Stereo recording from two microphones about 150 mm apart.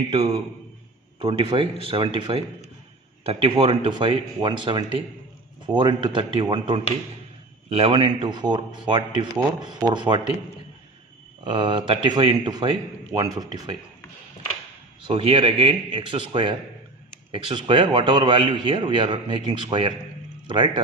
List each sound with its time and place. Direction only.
1.2 s a man's voice: 35° right (ahead or behind)
11.4 s a man's voice: 30° right (ahead or behind)
15.0 s a man's voice: 35° right (ahead or behind)